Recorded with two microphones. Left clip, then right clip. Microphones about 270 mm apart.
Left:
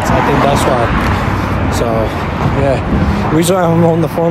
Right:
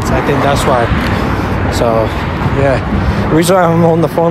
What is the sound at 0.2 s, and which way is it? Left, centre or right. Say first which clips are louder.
Speech: left 1 dB; left.